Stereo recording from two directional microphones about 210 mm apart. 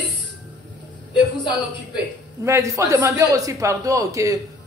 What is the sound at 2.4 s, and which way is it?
A woman's voice, 15° right (ahead or behind).